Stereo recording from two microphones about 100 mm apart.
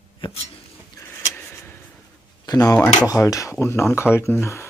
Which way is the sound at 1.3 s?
20° left (ahead or behind).